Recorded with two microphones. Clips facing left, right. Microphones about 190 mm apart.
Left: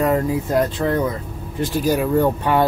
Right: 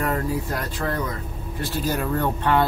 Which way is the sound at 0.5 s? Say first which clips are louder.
Left 8 dB; 20° left (ahead or behind).